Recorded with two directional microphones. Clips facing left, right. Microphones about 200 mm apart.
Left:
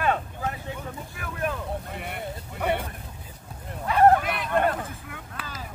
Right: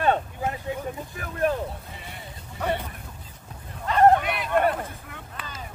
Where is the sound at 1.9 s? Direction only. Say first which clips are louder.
Left 6 dB; 60° left (ahead or behind).